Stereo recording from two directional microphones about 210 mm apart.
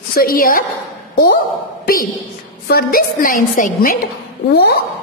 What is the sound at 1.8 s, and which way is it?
A woman's voice, 45° left (ahead or behind).